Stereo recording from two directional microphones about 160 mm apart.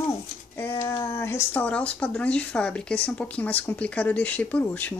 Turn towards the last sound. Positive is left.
turn(degrees=10)  # may be behind; listen again after turning